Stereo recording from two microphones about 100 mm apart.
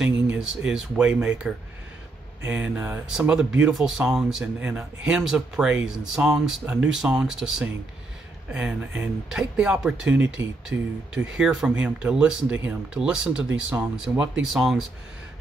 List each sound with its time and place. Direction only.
0.0 s speech: 10° right (ahead or behind)